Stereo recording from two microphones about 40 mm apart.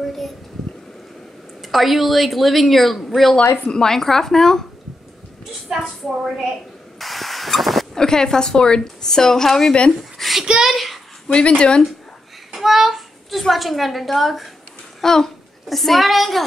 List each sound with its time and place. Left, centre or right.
1.6 s a woman's voice: centre
3.7 s a woman's voice: centre
5.7 s a woman's voice: centre
7.0 s vehicle: centre
7.9 s a woman's voice: centre
10.1 s a sound: centre
10.6 s a woman's voice: centre
11.2 s speech: left
12.5 s child singing: centre
13.4 s a woman's voice: centre
15.0 s a child's voice: centre